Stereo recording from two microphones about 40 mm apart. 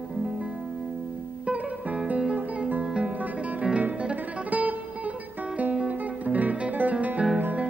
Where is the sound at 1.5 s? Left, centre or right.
Right.